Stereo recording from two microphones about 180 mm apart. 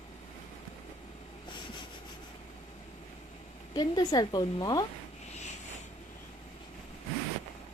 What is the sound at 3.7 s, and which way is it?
A woman's voice, 20° left (ahead or behind).